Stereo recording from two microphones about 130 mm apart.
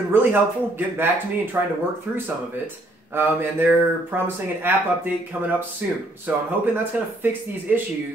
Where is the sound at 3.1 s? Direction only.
15° right (ahead or behind).